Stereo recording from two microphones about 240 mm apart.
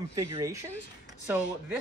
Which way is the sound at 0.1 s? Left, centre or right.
Centre.